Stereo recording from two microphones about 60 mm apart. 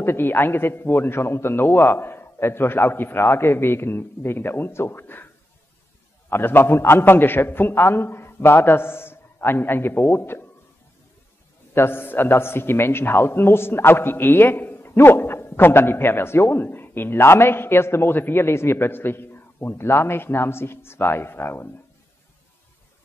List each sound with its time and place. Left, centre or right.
0.0 s a man's voice: left
11.7 s a man's voice: left